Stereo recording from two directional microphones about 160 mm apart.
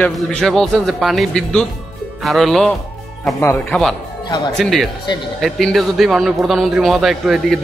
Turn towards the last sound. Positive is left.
turn(degrees=0)  # may be behind; listen again after turning